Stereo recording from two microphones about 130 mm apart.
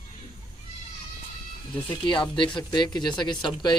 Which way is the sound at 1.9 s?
40° left (ahead or behind).